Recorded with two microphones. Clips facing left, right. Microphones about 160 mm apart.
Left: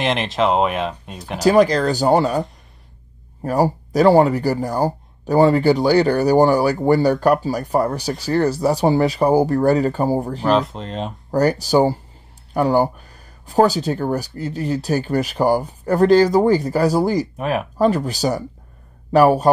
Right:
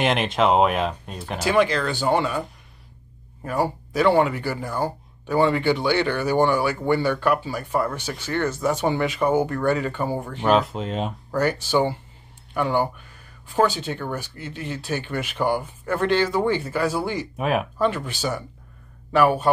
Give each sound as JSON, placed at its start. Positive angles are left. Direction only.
{"t": 0.0, "sound": "speech", "side_deg": 0}
{"t": 1.4, "sound": "speech", "side_deg": 40}
{"t": 3.4, "sound": "speech", "side_deg": 40}
{"t": 10.5, "sound": "speech", "side_deg": 0}
{"t": 11.3, "sound": "speech", "side_deg": 40}
{"t": 17.4, "sound": "speech", "side_deg": 0}
{"t": 17.7, "sound": "speech", "side_deg": 40}